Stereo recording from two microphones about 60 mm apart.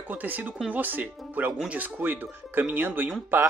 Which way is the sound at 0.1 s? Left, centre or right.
Right.